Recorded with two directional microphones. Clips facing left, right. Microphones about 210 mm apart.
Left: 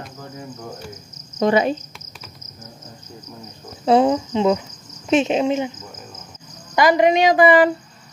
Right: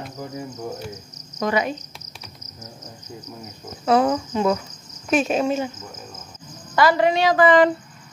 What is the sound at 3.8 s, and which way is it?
Speech, 25° left (ahead or behind).